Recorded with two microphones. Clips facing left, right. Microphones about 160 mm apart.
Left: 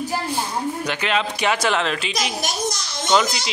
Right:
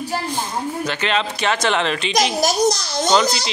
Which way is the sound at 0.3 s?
10° left (ahead or behind).